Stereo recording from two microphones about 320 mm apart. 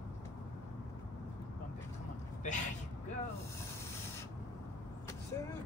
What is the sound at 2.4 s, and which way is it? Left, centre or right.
Vehicle, left.